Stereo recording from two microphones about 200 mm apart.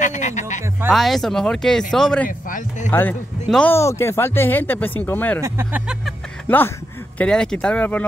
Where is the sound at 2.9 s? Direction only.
10° left (ahead or behind).